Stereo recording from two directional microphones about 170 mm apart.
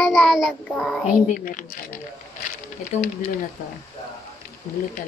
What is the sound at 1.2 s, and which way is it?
Speech, 50° left (ahead or behind).